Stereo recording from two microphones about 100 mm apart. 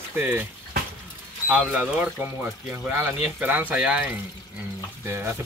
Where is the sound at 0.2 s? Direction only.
20° right (ahead or behind).